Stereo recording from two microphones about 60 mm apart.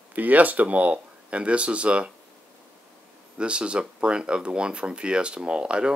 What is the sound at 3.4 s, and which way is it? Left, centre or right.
Speech, centre.